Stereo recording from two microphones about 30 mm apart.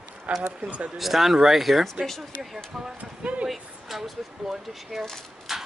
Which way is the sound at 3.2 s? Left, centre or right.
Right.